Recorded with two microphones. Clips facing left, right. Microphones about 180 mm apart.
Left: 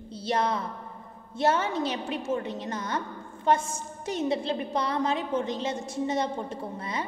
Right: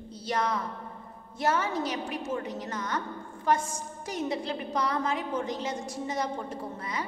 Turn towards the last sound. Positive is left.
turn(degrees=25)  # may be behind; listen again after turning